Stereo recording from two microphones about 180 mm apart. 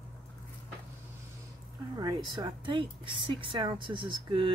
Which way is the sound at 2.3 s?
25° right (ahead or behind).